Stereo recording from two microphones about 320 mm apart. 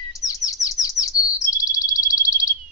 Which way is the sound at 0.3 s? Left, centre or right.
Centre.